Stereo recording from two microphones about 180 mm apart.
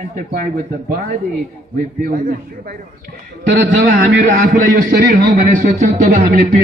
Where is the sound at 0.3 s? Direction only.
50° right (ahead or behind).